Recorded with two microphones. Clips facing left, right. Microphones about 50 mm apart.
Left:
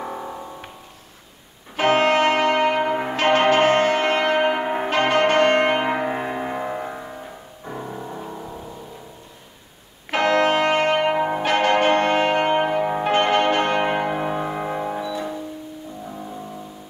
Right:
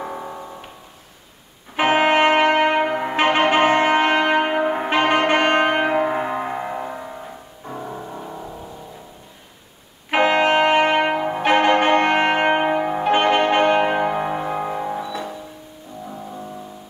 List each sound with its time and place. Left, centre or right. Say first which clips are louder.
0.0 s music: right 1 dB; centre
1.8 s music: right 1 dB; right
4.8 s brass instrument: left 1 dB; centre
5.9 s music: right 3 dB; centre
10.1 s music: right 2 dB; right
11.3 s brass instrument: right 6 dB; centre
12.8 s music: right 2 dB; centre
14.1 s music: right 1 dB; centre
14.6 s music: right 1 dB; centre